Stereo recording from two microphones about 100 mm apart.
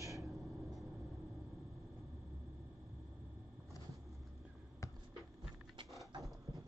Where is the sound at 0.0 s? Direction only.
30° right (ahead or behind).